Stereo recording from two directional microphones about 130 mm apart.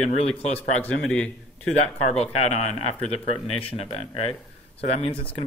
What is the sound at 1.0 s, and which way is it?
Speech, 10° left (ahead or behind).